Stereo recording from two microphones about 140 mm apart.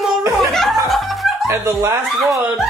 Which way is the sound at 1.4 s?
20° right (ahead or behind).